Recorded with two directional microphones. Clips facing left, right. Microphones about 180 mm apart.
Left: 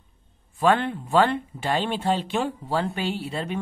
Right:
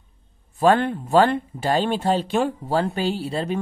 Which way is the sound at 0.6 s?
40° right (ahead or behind).